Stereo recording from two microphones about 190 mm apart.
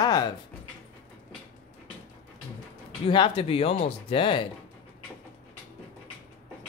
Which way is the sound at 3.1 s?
25° left (ahead or behind).